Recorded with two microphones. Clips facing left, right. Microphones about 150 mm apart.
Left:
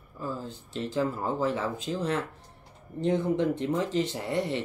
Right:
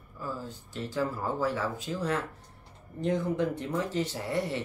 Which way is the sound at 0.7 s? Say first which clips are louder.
Left 3 dB; 25° left (ahead or behind).